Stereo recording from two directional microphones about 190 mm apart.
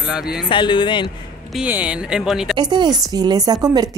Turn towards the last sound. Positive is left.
turn(degrees=-20)  # may be behind; listen again after turning